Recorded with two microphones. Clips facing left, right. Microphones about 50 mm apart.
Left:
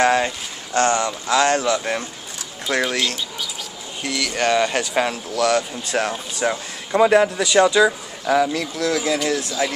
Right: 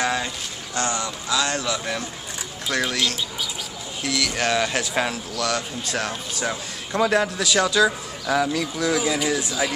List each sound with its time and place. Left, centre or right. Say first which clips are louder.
0.0 s a sound: left 7 dB; left
0.7 s speech: left 7 dB; left
4.0 s speech: left 2 dB; centre
5.4 s speech: left 7 dB; left; by 8.6 s centre
8.7 s speech: left 2 dB; centre